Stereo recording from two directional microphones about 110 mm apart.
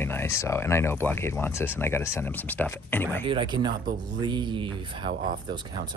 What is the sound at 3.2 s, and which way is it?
Speech, 45° right (ahead or behind).